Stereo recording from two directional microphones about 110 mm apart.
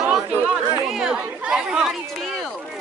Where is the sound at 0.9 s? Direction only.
5° right (ahead or behind).